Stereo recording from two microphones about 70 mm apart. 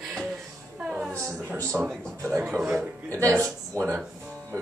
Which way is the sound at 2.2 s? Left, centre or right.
Right.